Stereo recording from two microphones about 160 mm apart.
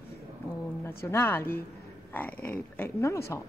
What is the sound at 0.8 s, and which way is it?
Speech, 15° left (ahead or behind).